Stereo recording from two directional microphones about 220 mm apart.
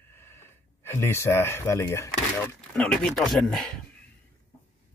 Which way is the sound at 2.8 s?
5° left (ahead or behind).